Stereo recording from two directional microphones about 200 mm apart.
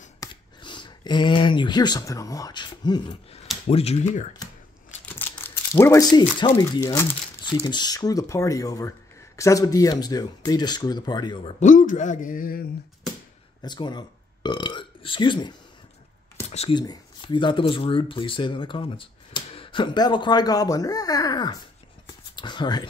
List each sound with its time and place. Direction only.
0.2 s a man's voice: 25° left (ahead or behind)
5.0 s speech: 10° left (ahead or behind)
11.6 s a man's voice: 40° left (ahead or behind)
13.6 s a man's voice: 20° left (ahead or behind)
22.0 s a sound: 20° left (ahead or behind)